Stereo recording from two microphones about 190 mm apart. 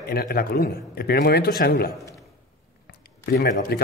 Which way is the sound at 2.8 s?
55° left (ahead or behind).